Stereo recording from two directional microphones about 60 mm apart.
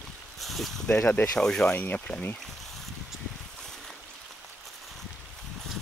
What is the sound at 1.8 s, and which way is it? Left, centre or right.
Speech, left.